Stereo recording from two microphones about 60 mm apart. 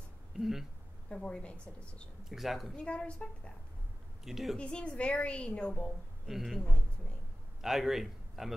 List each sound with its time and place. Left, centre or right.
0.3 s speech: centre
1.0 s a woman's voice: centre
2.2 s speech: centre
2.7 s a woman's voice: centre
4.2 s a woman's voice: centre
4.6 s a woman's voice: centre
6.2 s speech: centre
6.6 s speech: centre
7.6 s a man's voice: centre